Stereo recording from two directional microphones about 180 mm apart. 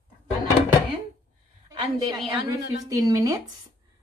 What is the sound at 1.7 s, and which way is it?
A woman's voice, 25° right (ahead or behind).